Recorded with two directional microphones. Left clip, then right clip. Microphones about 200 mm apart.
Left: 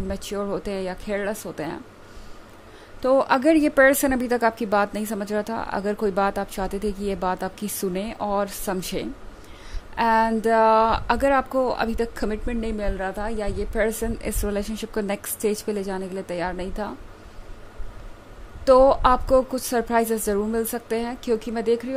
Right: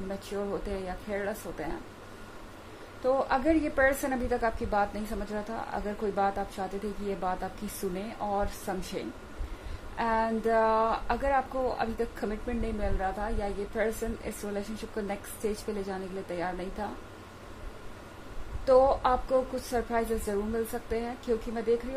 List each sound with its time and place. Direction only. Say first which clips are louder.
0.1 s speech: left 6 dB; 50° left (ahead or behind)
3.0 s speech: left 8 dB; 50° left (ahead or behind)
18.7 s speech: left 7 dB; 50° left (ahead or behind)